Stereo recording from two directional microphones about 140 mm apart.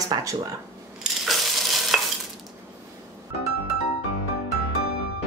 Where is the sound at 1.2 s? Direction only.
Centre (ahead or behind).